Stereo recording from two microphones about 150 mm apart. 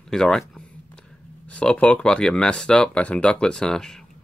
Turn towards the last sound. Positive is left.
turn(degrees=5)  # may be behind; listen again after turning